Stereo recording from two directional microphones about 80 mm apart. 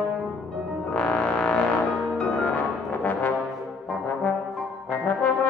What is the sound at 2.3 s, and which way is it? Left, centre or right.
Brass instrument, left.